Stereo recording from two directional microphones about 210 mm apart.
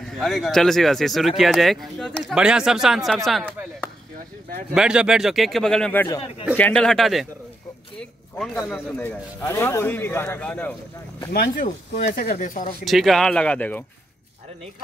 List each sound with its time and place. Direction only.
0.0 s speech: centre (ahead or behind)
4.7 s a man's voice: 5° right (ahead or behind)
11.3 s speech: 45° left (ahead or behind)
12.8 s speech: centre (ahead or behind)